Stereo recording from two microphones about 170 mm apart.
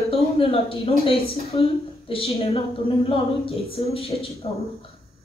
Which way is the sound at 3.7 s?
30° left (ahead or behind).